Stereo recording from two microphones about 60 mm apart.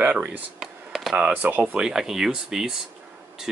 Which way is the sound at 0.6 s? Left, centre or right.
Centre.